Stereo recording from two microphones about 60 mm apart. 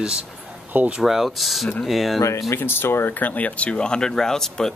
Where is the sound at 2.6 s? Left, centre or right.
Left.